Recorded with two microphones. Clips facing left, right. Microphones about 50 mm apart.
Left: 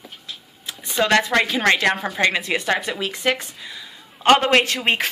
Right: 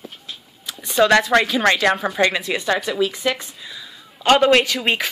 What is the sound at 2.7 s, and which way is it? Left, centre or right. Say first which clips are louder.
Speech: right 6 dB; left.